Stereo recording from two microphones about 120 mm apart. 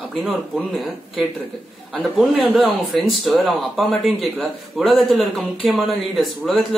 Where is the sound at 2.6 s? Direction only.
Centre (ahead or behind).